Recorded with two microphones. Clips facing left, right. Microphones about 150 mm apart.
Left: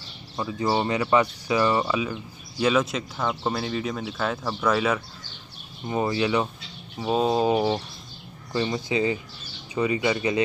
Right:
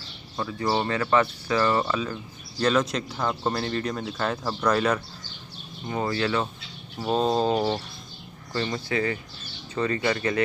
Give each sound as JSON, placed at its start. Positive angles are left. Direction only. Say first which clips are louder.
{"t": 0.4, "sound": "speech", "louder": "left 1 dB", "side_deg": 15}
{"t": 5.9, "sound": "speech", "louder": "left 2 dB", "side_deg": 15}